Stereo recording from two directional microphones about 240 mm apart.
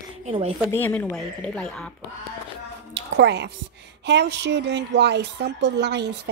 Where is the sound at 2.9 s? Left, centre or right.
Right.